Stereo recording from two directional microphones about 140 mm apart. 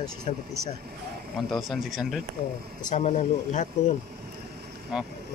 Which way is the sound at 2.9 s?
60° left (ahead or behind).